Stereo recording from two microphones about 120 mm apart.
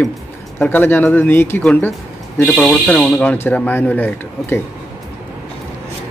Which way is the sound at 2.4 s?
5° left (ahead or behind).